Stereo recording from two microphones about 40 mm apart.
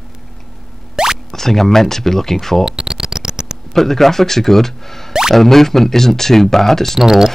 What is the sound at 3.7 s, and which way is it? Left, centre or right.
Speech, centre.